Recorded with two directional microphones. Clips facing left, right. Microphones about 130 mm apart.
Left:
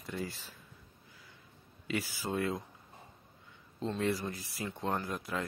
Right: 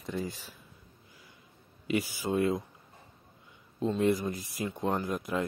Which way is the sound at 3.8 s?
15° right (ahead or behind).